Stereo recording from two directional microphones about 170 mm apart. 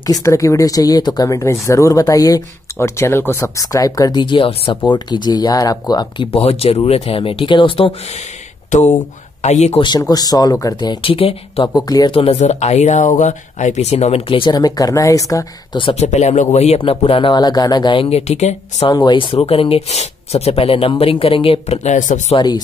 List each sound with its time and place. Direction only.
0.0 s speech: 20° left (ahead or behind)
8.6 s speech: 45° left (ahead or behind)
9.8 s speech: 25° left (ahead or behind)
11.7 s speech: 25° left (ahead or behind)
12.2 s speech: 40° left (ahead or behind)
18.9 s speech: 25° left (ahead or behind); by 22.4 s 45° left (ahead or behind)